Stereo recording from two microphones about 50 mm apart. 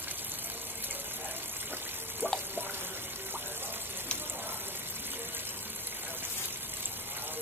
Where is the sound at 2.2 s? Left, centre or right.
Right.